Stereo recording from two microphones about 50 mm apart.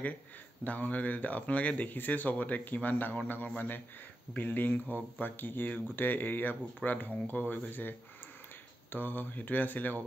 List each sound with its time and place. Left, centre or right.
0.7 s speech: left
8.9 s speech: left